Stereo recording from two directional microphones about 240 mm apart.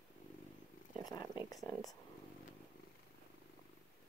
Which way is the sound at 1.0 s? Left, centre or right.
Centre.